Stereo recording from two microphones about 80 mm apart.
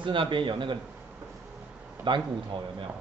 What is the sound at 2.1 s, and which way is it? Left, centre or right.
Speech, right.